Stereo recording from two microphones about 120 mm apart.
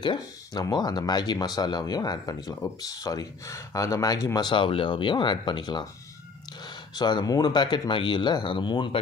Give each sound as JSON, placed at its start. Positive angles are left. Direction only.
{"t": 0.0, "sound": "speech", "side_deg": 40}
{"t": 4.5, "sound": "speech", "side_deg": 45}
{"t": 7.0, "sound": "speech", "side_deg": 35}